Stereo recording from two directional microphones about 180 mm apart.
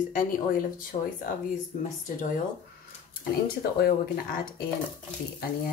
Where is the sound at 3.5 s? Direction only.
55° left (ahead or behind).